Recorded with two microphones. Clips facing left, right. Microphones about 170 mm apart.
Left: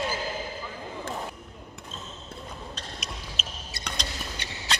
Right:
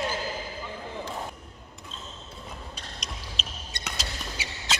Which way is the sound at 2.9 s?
5° left (ahead or behind).